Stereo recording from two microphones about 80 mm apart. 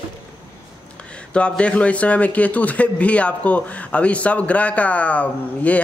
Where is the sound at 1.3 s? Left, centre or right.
Centre.